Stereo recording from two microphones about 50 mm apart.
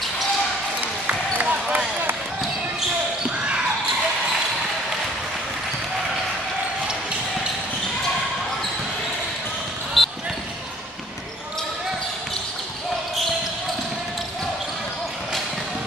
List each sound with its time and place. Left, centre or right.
0.7 s basketball bounce: right
10.0 s basketball bounce: centre